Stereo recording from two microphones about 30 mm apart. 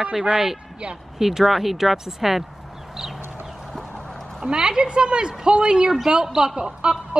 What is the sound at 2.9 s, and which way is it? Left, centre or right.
Chicken, centre.